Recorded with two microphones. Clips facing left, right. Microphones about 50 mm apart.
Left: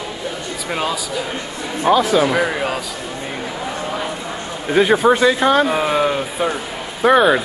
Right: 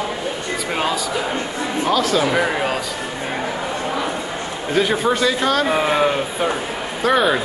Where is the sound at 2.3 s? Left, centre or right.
Centre.